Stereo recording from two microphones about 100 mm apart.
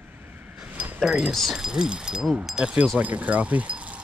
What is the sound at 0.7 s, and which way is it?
Keys jangling, 20° right (ahead or behind).